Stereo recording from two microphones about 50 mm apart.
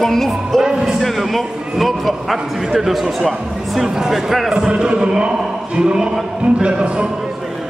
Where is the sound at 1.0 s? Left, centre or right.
Centre.